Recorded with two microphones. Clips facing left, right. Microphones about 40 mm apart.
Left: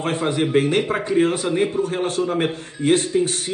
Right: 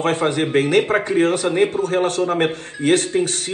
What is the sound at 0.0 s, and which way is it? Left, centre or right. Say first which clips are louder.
A man's voice: right 2 dB; right.